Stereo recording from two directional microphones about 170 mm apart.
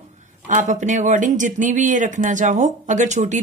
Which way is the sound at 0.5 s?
45° right (ahead or behind).